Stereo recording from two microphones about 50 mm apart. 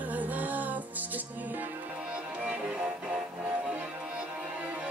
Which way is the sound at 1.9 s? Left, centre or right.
Right.